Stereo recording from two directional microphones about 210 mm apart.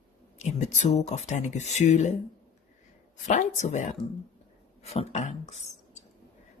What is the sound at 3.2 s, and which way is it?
A man's voice, 35° left (ahead or behind).